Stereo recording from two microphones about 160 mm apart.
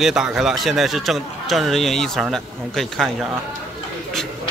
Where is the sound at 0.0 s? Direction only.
5° right (ahead or behind).